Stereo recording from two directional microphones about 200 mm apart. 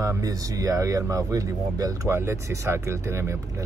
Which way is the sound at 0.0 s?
15° right (ahead or behind).